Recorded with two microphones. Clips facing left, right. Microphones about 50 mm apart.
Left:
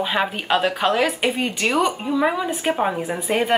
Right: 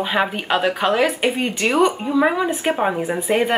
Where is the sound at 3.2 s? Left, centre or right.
Centre.